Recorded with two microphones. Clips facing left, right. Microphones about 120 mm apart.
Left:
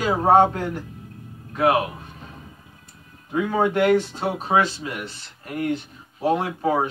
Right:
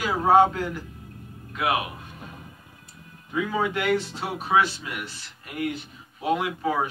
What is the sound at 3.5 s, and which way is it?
Speech, 50° left (ahead or behind).